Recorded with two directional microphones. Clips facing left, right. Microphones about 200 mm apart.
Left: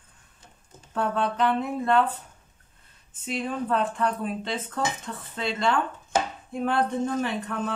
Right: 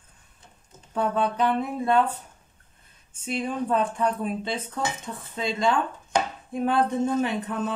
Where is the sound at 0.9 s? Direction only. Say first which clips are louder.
Right 1 dB; 10° right (ahead or behind).